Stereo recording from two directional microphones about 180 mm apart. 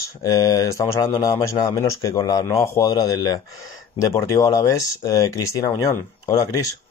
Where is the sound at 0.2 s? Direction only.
20° left (ahead or behind).